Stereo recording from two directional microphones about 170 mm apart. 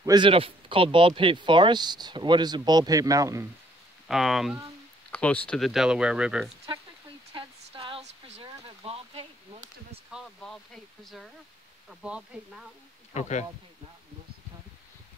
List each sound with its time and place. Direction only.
0.0 s speech: 25° right (ahead or behind)
4.1 s speech: centre (ahead or behind)
5.1 s speech: 10° left (ahead or behind)
7.3 s a sound: 30° right (ahead or behind)
10.1 s speech: centre (ahead or behind)
13.1 s speech: 45° left (ahead or behind)